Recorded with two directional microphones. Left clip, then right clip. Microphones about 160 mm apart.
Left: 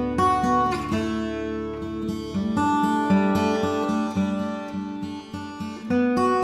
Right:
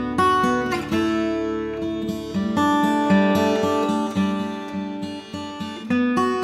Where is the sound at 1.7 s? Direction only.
10° left (ahead or behind).